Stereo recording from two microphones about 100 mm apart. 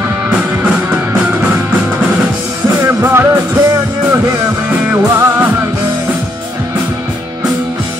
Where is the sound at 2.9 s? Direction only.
25° right (ahead or behind).